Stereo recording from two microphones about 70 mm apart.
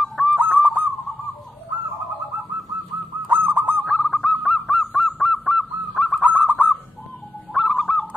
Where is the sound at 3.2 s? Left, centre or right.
Right.